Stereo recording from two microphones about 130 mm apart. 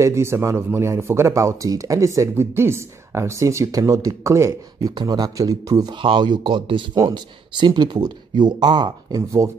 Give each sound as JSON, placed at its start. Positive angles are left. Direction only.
{"t": 0.0, "sound": "speech", "side_deg": -20}